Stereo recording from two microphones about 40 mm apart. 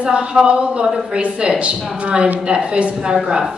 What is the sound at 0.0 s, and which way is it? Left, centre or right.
A woman's voice, right.